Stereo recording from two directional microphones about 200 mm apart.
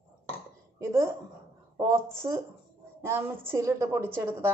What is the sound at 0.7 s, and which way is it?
Speech, 15° right (ahead or behind).